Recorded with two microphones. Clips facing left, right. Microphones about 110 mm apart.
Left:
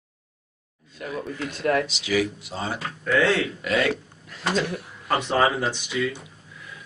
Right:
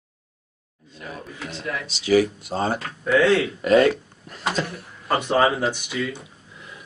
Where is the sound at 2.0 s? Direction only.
40° right (ahead or behind).